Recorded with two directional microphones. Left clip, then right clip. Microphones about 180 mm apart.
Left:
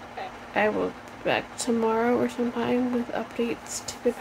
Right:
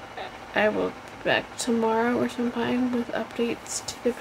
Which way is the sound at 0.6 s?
10° right (ahead or behind).